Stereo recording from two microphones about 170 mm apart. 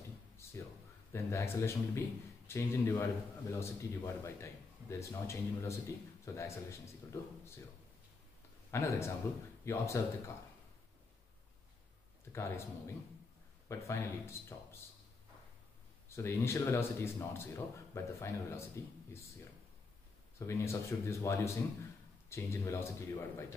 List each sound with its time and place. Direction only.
0.4 s a sound: 15° left (ahead or behind)
1.1 s a man's voice: 15° left (ahead or behind)
8.7 s a man's voice: 15° left (ahead or behind)
12.3 s a man's voice: 15° left (ahead or behind)
16.2 s a man's voice: 15° left (ahead or behind)
20.3 s a man's voice: 15° left (ahead or behind)